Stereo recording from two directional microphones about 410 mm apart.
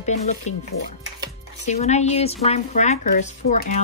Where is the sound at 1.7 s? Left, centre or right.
Centre.